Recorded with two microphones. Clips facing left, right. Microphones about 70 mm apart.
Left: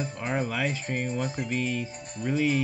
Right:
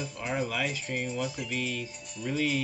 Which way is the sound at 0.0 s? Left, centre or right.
Left.